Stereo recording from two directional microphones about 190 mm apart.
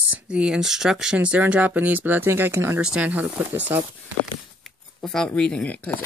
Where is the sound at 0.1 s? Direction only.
5° right (ahead or behind).